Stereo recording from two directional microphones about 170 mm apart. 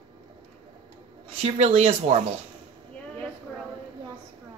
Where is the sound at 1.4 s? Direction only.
35° right (ahead or behind).